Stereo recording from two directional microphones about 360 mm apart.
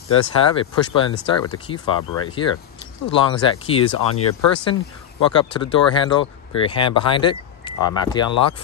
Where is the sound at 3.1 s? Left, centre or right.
Centre.